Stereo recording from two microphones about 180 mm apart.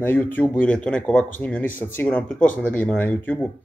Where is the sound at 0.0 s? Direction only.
10° left (ahead or behind).